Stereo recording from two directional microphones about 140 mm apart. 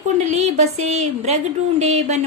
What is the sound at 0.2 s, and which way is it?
Speech, 55° right (ahead or behind).